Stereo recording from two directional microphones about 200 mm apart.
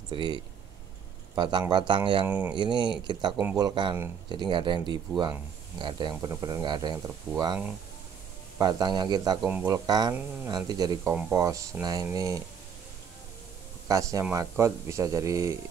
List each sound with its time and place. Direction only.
0.1 s speech: 25° right (ahead or behind)
2.2 s speech: 10° right (ahead or behind)
2.5 s speech: 20° right (ahead or behind)
8.5 s speech: 20° right (ahead or behind)
9.4 s speech: 10° right (ahead or behind)
9.8 s speech: 20° right (ahead or behind)
13.8 s speech: 15° right (ahead or behind)